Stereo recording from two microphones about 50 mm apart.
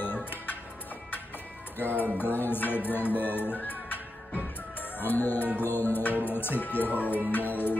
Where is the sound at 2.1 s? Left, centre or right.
Left.